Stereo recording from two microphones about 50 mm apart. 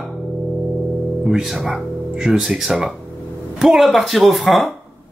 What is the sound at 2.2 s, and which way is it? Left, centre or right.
Speech, centre.